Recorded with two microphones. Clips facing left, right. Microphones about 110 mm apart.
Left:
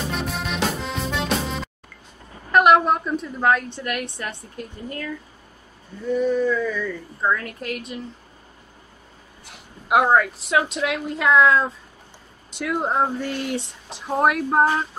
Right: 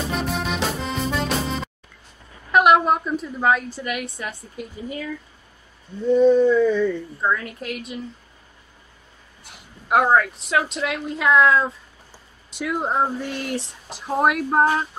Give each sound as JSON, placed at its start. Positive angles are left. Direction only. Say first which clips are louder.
{"t": 0.1, "sound": "music", "louder": "right 2 dB", "side_deg": 0}
{"t": 2.5, "sound": "a woman's voice", "louder": "even", "side_deg": 0}
{"t": 6.0, "sound": "speech", "louder": "right 6 dB", "side_deg": -25}
{"t": 7.2, "sound": "a woman's voice", "louder": "even", "side_deg": 0}
{"t": 9.8, "sound": "a woman's voice", "louder": "even", "side_deg": 5}